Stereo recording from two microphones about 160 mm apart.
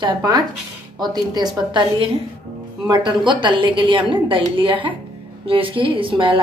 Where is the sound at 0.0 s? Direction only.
25° right (ahead or behind).